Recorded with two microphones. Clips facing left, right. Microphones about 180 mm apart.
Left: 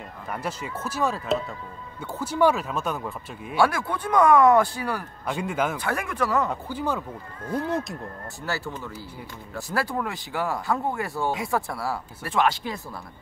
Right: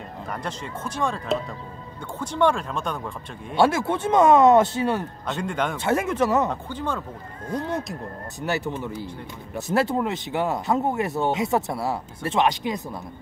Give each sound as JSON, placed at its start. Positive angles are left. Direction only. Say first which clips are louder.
{"t": 0.3, "sound": "speech", "louder": "left 1 dB", "side_deg": 5}
{"t": 3.5, "sound": "speech", "louder": "right 3 dB", "side_deg": -25}
{"t": 5.2, "sound": "speech", "louder": "even", "side_deg": 5}
{"t": 5.8, "sound": "speech", "louder": "right 5 dB", "side_deg": -25}
{"t": 6.5, "sound": "speech", "louder": "left 1 dB", "side_deg": 10}
{"t": 8.4, "sound": "speech", "louder": "right 5 dB", "side_deg": -20}